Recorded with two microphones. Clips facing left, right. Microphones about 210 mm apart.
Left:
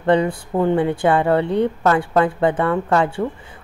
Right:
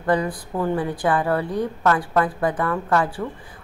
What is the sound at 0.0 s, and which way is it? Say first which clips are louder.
A woman's voice: left 5 dB; 25° left (ahead or behind).